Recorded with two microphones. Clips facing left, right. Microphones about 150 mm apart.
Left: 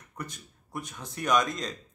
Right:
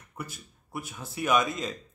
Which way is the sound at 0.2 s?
5° right (ahead or behind).